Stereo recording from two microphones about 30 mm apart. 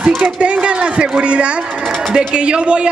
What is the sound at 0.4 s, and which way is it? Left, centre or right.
A man's voice, right.